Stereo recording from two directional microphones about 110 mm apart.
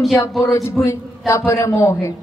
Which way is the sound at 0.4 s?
30° left (ahead or behind).